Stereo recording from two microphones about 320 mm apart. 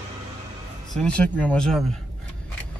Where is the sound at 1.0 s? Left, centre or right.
Centre.